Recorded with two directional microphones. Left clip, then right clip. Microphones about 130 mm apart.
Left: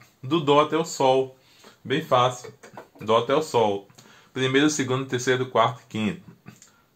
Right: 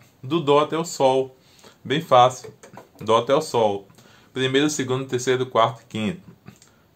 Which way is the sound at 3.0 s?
55° right (ahead or behind).